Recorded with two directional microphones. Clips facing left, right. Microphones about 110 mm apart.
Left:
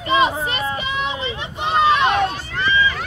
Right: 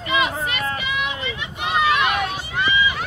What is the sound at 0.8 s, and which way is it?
Run, 30° left (ahead or behind).